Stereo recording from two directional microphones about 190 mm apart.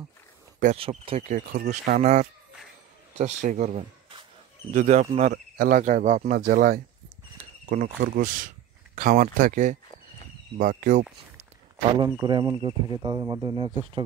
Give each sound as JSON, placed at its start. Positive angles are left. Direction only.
{"t": 0.7, "sound": "speech", "side_deg": -30}
{"t": 12.0, "sound": "speech", "side_deg": -25}